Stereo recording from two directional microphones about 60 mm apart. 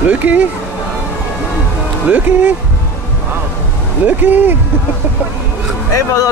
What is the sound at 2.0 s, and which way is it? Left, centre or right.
Speech, right.